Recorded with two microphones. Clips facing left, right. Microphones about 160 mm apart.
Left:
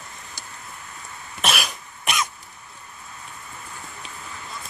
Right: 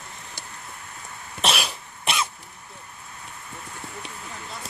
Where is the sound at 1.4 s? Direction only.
30° right (ahead or behind).